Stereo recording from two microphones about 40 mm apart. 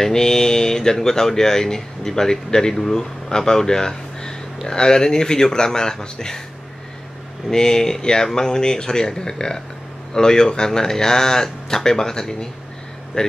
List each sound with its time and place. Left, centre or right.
0.0 s speech: centre
7.4 s speech: centre